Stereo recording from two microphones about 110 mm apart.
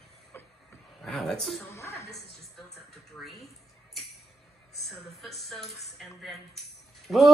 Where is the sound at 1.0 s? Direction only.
5° left (ahead or behind).